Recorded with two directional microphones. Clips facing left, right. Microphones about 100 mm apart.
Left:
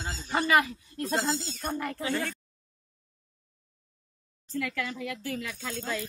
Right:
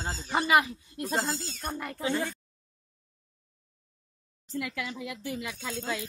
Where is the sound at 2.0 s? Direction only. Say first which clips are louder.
Right 1 dB; 20° right (ahead or behind).